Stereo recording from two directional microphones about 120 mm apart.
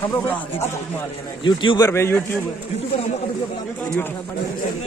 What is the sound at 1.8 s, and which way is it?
Speech, 20° left (ahead or behind).